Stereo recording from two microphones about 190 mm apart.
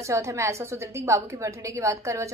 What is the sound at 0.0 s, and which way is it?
A woman's voice, 15° right (ahead or behind).